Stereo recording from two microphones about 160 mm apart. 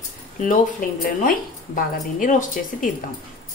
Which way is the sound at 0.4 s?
55° left (ahead or behind).